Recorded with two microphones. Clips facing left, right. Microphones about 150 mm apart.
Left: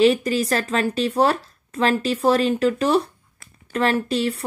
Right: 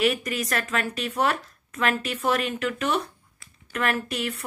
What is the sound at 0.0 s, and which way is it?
Speech, 30° left (ahead or behind).